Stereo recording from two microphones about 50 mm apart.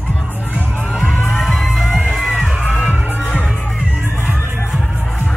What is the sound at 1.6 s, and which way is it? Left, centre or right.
Music, centre.